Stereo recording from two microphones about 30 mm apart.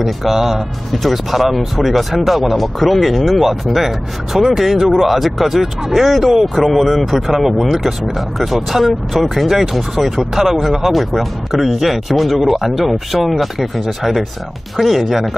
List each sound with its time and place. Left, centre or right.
0.0 s speech: centre
10.3 s speech: centre